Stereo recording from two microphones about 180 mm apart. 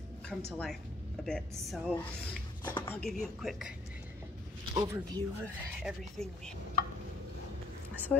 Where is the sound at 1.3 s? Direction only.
5° left (ahead or behind).